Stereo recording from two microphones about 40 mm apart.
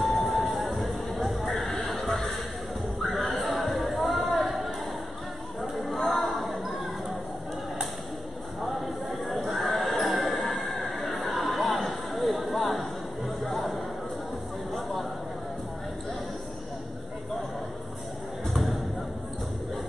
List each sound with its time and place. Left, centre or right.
0.0 s music: centre
3.0 s chatter: centre
6.0 s a sound: centre
8.5 s neigh: centre
12.4 s a sound: centre
18.5 s thump: centre